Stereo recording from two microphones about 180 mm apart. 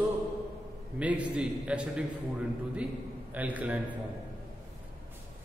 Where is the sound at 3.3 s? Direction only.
10° right (ahead or behind).